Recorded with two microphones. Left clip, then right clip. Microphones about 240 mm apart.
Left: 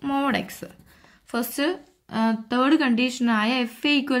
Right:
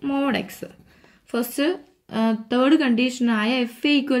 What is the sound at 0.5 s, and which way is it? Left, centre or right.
Speech, left.